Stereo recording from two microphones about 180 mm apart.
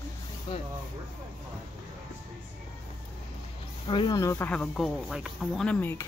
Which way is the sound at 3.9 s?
25° left (ahead or behind).